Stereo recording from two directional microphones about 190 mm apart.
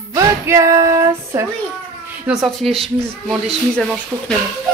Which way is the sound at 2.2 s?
Centre (ahead or behind).